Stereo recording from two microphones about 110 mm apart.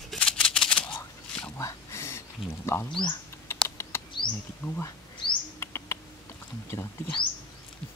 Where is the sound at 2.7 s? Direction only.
25° left (ahead or behind).